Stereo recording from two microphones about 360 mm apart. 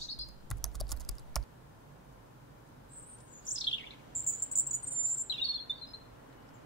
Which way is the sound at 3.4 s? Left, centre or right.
Left.